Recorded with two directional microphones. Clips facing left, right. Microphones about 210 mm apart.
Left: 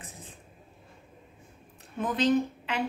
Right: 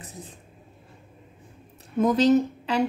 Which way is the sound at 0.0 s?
35° right (ahead or behind).